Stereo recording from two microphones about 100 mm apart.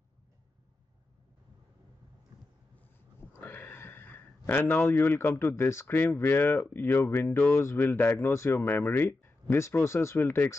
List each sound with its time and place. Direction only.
3.3 s speech: 20° left (ahead or behind)